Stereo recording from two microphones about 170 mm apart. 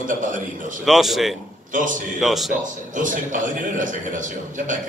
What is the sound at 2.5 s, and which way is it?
A man's voice, 50° right (ahead or behind).